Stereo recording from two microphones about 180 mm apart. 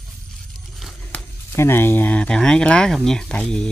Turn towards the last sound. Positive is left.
turn(degrees=5)  # may be behind; listen again after turning